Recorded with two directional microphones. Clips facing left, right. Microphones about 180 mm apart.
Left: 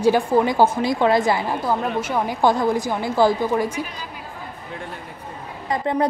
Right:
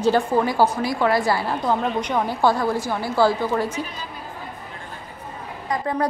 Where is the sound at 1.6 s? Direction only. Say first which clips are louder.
Right 1 dB; 5° left (ahead or behind).